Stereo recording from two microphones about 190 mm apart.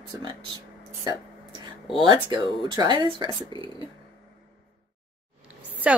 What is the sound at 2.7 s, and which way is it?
Speech, 20° right (ahead or behind).